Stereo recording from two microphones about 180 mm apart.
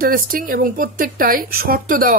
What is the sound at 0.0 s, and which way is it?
A woman's voice, 50° right (ahead or behind).